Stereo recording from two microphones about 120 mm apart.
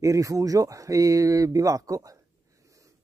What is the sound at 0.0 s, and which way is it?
Speech, 25° right (ahead or behind).